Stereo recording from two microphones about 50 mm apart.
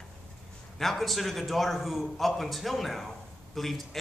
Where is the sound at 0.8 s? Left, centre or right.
Centre.